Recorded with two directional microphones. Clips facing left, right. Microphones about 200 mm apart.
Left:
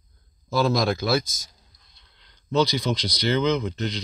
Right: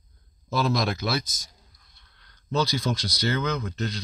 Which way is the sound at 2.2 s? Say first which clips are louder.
Left 4 dB; 20° left (ahead or behind).